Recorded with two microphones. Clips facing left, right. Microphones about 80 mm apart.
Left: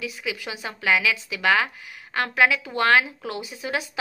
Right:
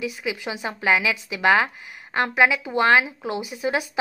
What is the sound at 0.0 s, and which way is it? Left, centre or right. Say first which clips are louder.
A woman's voice: right 3 dB; right.